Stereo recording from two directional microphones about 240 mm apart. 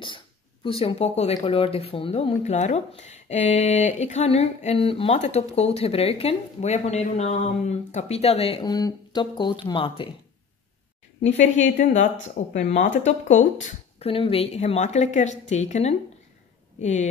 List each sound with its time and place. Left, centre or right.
0.7 s speech: left
11.2 s speech: left